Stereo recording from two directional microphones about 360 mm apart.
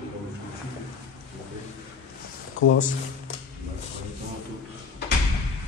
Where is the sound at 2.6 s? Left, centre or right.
Left.